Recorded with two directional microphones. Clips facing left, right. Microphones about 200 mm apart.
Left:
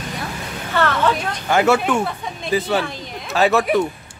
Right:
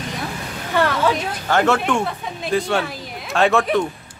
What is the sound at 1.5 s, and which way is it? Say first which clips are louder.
Speech: left 2 dB; 10° left (ahead or behind).